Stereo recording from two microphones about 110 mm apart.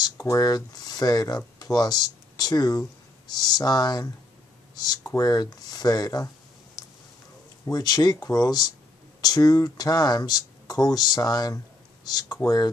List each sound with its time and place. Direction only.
0.2 s speech: 35° left (ahead or behind)